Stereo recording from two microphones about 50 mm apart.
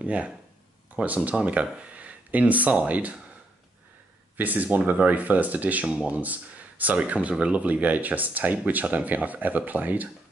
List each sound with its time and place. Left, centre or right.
0.0 s speech: right
4.4 s speech: right
5.9 s speech: right